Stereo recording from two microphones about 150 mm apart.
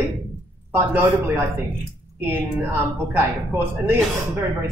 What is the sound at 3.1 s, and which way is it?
Speech, 15° right (ahead or behind).